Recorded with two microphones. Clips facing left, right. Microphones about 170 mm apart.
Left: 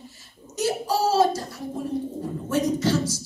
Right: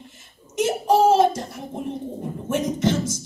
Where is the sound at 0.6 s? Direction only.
25° right (ahead or behind).